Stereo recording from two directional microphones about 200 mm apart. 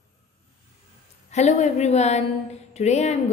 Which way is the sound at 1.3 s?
35° left (ahead or behind).